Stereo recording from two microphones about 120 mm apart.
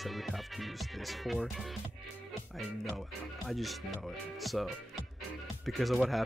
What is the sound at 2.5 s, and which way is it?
Music, centre (ahead or behind).